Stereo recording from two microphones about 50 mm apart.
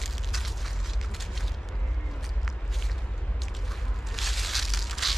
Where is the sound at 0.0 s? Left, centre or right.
Centre.